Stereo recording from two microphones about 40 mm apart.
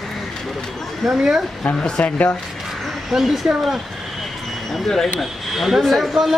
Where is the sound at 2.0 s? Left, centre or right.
Left.